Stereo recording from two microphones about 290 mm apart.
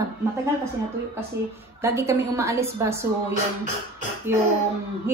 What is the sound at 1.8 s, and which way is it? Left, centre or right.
A woman's voice, centre.